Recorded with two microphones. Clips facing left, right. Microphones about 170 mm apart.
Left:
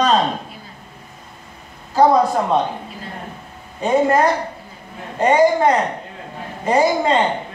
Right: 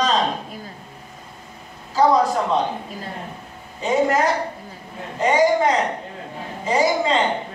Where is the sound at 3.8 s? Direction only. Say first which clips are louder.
Left 3 dB; 55° left (ahead or behind).